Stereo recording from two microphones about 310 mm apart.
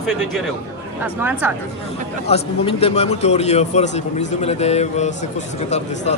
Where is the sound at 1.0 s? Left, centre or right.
Centre.